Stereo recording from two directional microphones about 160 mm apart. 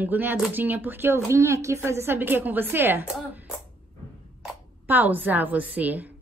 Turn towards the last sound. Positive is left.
turn(degrees=-10)  # may be behind; listen again after turning